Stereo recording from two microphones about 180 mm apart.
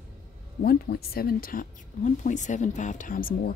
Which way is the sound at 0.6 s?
55° left (ahead or behind).